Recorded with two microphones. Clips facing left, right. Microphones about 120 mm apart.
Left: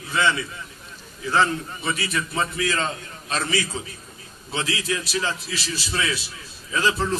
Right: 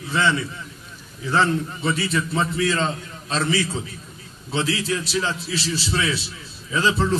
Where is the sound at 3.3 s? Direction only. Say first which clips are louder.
Right 3 dB; 20° right (ahead or behind).